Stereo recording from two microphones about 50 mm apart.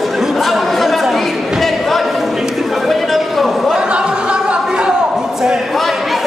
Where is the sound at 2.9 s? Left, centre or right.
Centre.